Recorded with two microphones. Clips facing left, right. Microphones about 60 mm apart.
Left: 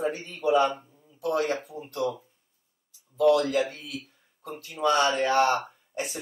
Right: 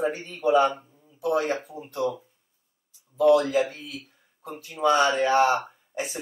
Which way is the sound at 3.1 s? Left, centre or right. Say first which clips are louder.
Right 2 dB; right.